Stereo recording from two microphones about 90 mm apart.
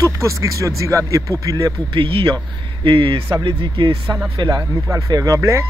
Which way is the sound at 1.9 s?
75° right (ahead or behind).